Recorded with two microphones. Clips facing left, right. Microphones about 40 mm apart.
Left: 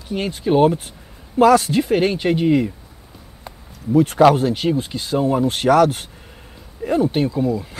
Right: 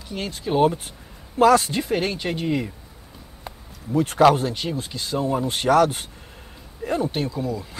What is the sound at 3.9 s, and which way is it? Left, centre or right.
Speech, centre.